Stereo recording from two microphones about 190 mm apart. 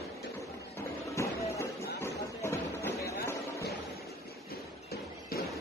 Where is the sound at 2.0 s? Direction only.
15° left (ahead or behind).